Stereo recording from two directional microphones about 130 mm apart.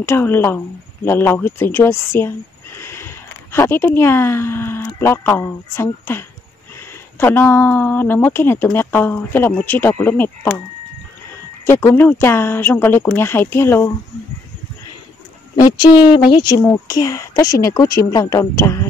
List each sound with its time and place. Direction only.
0.0 s a woman's voice: 15° left (ahead or behind)
11.6 s speech: 20° left (ahead or behind)
15.5 s speech: 30° left (ahead or behind)
16.6 s a woman's voice: 25° left (ahead or behind)